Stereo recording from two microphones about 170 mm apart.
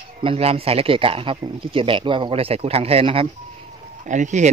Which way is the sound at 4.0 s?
45° right (ahead or behind).